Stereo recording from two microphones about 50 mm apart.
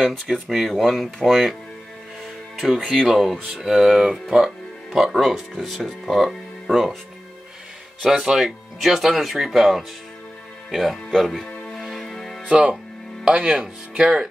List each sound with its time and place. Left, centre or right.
0.0 s speech: centre
2.8 s speech: centre
4.9 s speech: centre
8.0 s speech: centre
11.4 s music: centre
12.4 s speech: right